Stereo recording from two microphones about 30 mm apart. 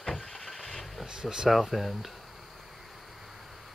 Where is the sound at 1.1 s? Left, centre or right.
Right.